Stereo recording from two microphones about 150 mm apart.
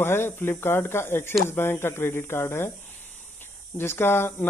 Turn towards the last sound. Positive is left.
turn(degrees=15)  # may be behind; listen again after turning